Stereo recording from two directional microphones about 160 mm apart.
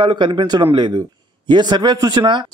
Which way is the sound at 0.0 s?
30° right (ahead or behind).